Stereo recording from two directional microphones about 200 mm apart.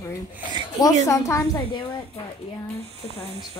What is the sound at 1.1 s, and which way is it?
Speech, 15° left (ahead or behind).